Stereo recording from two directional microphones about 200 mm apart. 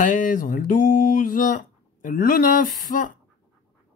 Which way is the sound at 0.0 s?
40° left (ahead or behind).